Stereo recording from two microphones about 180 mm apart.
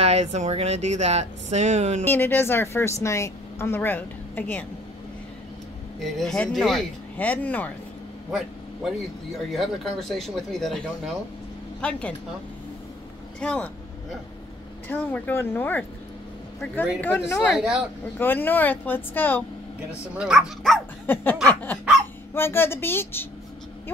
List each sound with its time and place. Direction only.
0.0 s speech: 35° right (ahead or behind)
2.0 s speech: 10° left (ahead or behind)
6.1 s speech: 5° left (ahead or behind)
8.3 s speech: centre (ahead or behind)
11.8 s speech: 5° left (ahead or behind)
13.4 s speech: 5° left (ahead or behind)
14.9 s speech: 10° left (ahead or behind)
17.0 s speech: 10° left (ahead or behind)
17.6 s speech: 5° right (ahead or behind)
18.1 s speech: 10° left (ahead or behind)
20.2 s speech: 5° right (ahead or behind)
21.1 s speech: 10° left (ahead or behind)